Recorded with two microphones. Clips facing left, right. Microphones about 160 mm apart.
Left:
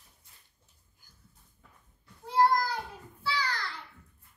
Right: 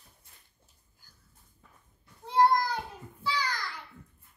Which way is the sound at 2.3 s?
20° right (ahead or behind).